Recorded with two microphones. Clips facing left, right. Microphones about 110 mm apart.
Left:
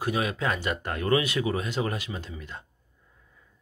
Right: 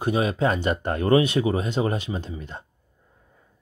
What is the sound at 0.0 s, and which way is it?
Speech, 30° right (ahead or behind).